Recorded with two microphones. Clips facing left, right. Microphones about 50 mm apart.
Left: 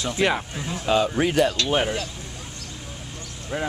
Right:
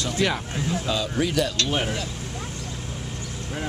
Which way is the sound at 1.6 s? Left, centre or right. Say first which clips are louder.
Left 3 dB; centre.